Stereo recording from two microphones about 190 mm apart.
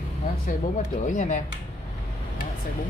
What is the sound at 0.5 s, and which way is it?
Speech, 40° left (ahead or behind).